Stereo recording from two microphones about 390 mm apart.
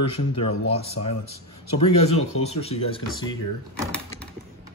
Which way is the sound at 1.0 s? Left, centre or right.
Left.